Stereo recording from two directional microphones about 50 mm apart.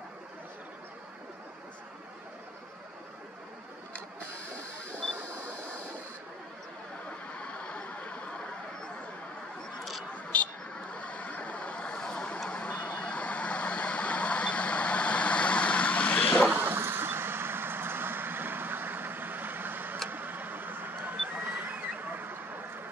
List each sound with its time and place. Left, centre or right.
5.1 s printer: right
7.3 s a sound: left
10.1 s vehicle: left
16.6 s vehicle: right